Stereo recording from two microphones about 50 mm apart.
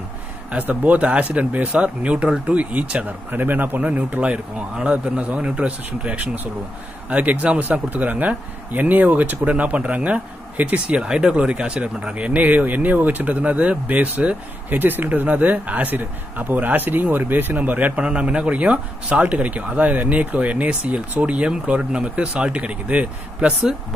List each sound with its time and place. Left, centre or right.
0.5 s a man's voice: right
3.3 s speech: right
11.0 s a man's voice: centre